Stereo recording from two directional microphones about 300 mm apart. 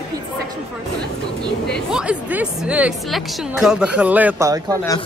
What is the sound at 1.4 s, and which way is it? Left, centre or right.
A woman's voice, centre.